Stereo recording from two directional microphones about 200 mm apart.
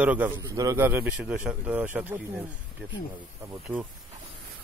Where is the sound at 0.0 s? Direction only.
10° right (ahead or behind).